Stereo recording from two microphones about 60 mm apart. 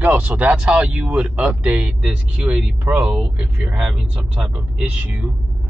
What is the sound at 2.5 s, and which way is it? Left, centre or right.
Speech, right.